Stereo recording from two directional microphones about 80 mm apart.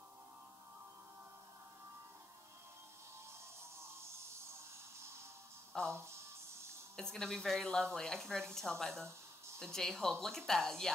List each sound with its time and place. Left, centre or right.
5.9 s music: right
7.0 s a woman's voice: centre